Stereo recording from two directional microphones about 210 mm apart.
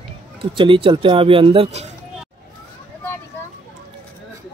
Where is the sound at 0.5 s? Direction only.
25° right (ahead or behind).